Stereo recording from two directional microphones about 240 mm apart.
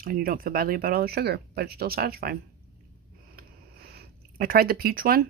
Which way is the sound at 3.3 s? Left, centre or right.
Right.